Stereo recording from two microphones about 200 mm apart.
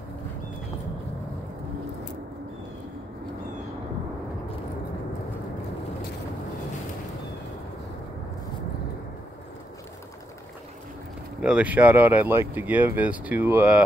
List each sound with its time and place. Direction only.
11.4 s speech: 5° right (ahead or behind)